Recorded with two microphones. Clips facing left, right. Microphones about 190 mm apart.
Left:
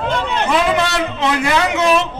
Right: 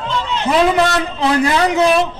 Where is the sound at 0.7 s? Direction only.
35° right (ahead or behind).